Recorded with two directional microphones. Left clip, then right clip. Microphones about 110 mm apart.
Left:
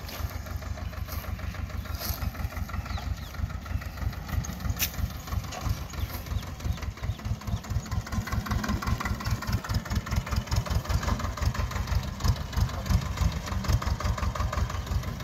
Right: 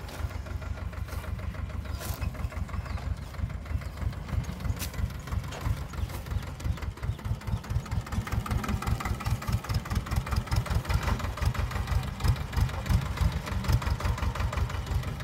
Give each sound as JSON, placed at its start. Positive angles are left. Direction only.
{"t": 8.3, "sound": "engine", "side_deg": -65}
{"t": 9.8, "sound": "vehicle", "side_deg": -45}